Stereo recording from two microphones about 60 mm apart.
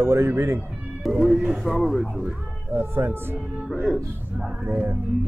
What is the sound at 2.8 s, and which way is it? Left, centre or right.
Speech, right.